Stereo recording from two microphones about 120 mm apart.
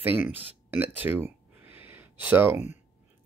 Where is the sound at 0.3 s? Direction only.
15° right (ahead or behind).